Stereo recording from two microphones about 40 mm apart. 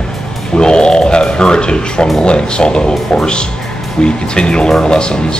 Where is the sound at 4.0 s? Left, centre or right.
Centre.